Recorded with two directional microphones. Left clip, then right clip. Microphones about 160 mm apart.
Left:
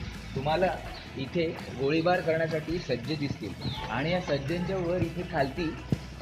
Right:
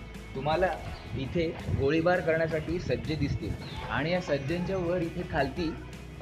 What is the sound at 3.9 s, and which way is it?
Speech, 5° left (ahead or behind).